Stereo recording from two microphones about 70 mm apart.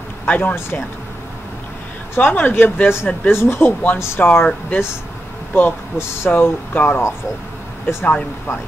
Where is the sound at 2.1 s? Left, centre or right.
Left.